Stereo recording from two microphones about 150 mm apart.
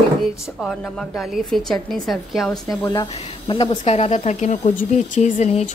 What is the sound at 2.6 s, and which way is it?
Speech, 25° left (ahead or behind).